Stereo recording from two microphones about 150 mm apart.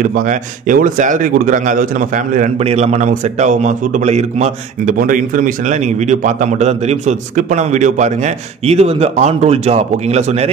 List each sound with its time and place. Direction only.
0.0 s a man's voice: 60° right (ahead or behind)
2.6 s a man's voice: 45° right (ahead or behind)
4.9 s a man's voice: 65° right (ahead or behind); by 10.5 s 45° right (ahead or behind)